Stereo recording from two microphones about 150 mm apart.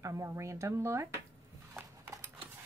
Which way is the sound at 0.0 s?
20° right (ahead or behind).